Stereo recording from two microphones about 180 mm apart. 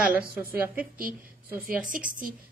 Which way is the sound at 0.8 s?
55° right (ahead or behind).